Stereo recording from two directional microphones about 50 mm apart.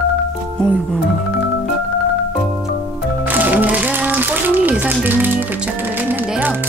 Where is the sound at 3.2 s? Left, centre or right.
Right.